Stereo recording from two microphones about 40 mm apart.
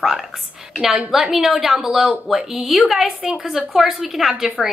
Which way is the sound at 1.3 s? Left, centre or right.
Centre.